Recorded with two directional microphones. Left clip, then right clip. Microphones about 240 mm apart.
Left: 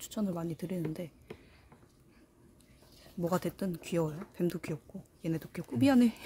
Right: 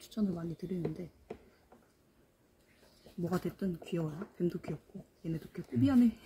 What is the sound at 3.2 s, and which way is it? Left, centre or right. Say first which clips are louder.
Speech: left 4 dB; left.